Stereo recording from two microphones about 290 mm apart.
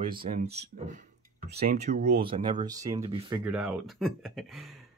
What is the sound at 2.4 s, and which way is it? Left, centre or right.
Speech, centre.